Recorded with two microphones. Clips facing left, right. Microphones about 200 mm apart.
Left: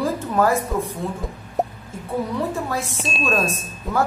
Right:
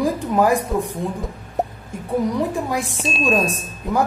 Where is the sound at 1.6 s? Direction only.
Centre (ahead or behind).